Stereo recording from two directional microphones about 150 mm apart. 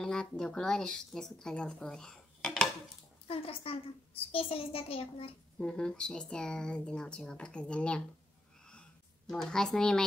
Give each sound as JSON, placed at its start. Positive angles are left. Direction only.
{"t": 0.0, "sound": "a woman's voice", "side_deg": 5}
{"t": 3.3, "sound": "a woman's voice", "side_deg": 40}
{"t": 5.6, "sound": "speech", "side_deg": 5}
{"t": 9.3, "sound": "speech", "side_deg": 5}